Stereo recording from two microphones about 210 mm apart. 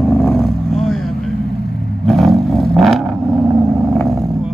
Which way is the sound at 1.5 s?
50° left (ahead or behind).